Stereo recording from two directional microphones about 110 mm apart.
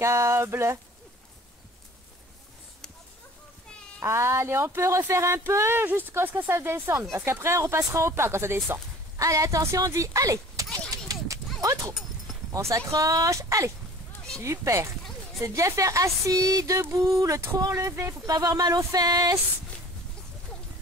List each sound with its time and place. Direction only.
0.0 s speech: 25° right (ahead or behind)
4.0 s speech: 25° right (ahead or behind)
9.2 s a sound: 30° right (ahead or behind)
11.6 s dog: 30° right (ahead or behind)
12.5 s speech: 30° right (ahead or behind)